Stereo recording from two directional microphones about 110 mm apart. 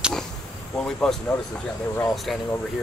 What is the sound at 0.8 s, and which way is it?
Speech, 10° left (ahead or behind).